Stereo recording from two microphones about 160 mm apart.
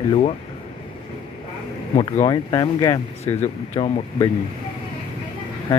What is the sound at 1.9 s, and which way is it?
Speech, 30° left (ahead or behind).